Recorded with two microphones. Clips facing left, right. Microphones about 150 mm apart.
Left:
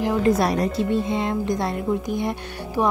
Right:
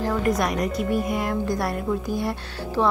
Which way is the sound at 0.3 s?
30° left (ahead or behind).